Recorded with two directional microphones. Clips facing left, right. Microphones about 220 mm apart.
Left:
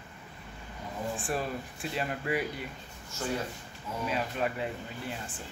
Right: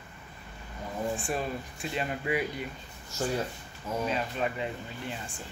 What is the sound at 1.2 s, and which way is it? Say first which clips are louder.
Speech: right 1 dB; centre (ahead or behind).